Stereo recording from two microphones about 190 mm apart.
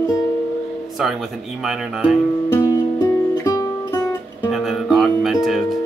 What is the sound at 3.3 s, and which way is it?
Music, 15° left (ahead or behind).